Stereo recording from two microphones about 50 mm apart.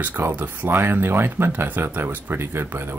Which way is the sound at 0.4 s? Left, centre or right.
Right.